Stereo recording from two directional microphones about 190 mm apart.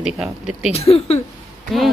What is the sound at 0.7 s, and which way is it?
Speech, 30° left (ahead or behind).